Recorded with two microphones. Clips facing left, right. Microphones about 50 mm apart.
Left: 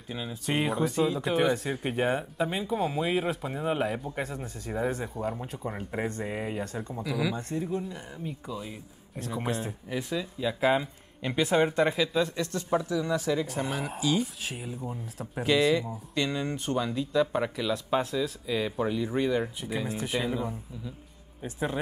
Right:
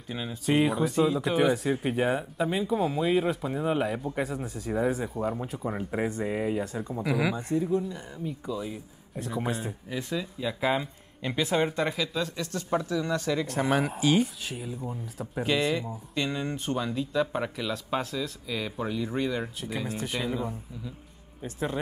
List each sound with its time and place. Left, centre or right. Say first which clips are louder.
0.5 s speech: right 3 dB; centre
6.2 s speech: right 4 dB; centre
6.6 s speech: right 2 dB; centre
7.0 s speech: right 3 dB; right
7.3 s speech: right 4 dB; centre
7.6 s speech: right 4 dB; centre
12.3 s speech: left 2 dB; left
12.9 s speech: even; centre
13.7 s speech: right 7 dB; right
14.4 s speech: right 1 dB; centre
18.1 s speech: left 3 dB; centre
20.2 s speech: even; centre